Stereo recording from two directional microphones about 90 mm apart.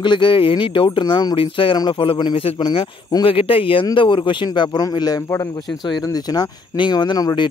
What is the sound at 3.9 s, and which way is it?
A man's voice, 65° left (ahead or behind).